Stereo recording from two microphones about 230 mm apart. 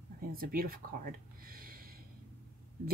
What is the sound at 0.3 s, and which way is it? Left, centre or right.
Speech, right.